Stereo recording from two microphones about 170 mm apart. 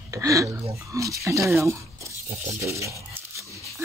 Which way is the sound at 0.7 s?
20° right (ahead or behind).